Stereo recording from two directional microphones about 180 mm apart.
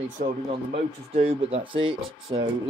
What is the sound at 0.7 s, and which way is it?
Speech, 30° right (ahead or behind).